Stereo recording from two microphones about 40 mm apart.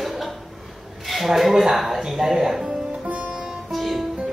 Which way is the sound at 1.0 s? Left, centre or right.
Centre.